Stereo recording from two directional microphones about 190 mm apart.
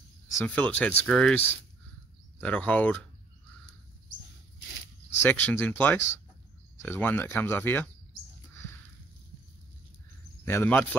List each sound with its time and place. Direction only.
0.3 s speech: 10° left (ahead or behind)
5.2 s speech: 10° left (ahead or behind)
10.4 s speech: 15° left (ahead or behind)